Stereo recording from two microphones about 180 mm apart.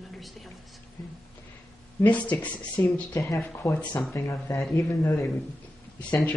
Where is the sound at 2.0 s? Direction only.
10° left (ahead or behind).